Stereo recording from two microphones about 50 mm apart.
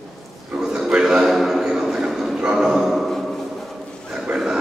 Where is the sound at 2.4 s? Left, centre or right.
Centre.